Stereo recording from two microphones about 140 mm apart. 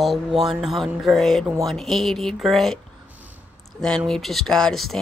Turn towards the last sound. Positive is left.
turn(degrees=0)  # may be behind; listen again after turning